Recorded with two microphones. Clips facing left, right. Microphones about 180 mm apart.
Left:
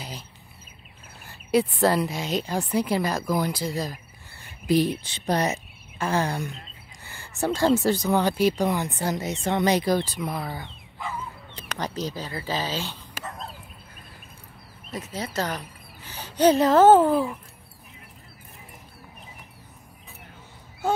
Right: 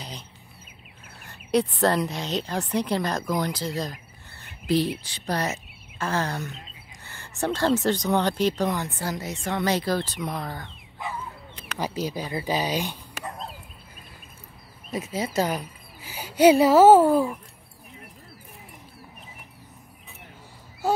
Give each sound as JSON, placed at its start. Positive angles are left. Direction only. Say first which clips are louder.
{"t": 1.2, "sound": "speech", "louder": "left 1 dB", "side_deg": 5}
{"t": 5.0, "sound": "speech", "louder": "left 3 dB", "side_deg": 20}
{"t": 11.8, "sound": "speech", "louder": "right 2 dB", "side_deg": -10}
{"t": 14.9, "sound": "speech", "louder": "right 4 dB", "side_deg": -10}